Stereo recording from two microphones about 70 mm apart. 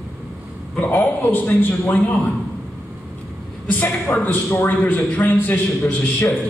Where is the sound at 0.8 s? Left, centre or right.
Left.